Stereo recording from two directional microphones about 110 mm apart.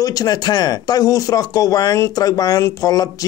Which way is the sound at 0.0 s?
35° left (ahead or behind).